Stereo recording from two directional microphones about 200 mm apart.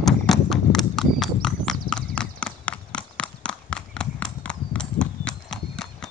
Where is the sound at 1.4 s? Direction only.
5° left (ahead or behind).